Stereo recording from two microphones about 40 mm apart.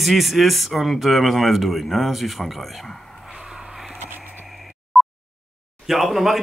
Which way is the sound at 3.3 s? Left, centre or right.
Centre.